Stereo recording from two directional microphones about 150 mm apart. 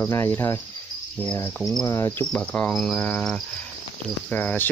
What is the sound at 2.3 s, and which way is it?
Cricket, 10° left (ahead or behind).